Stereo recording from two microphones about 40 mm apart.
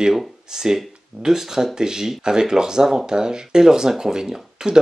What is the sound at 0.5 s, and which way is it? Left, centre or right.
Speech, centre.